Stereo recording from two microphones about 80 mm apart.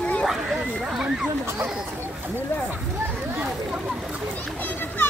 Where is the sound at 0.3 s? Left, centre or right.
Centre.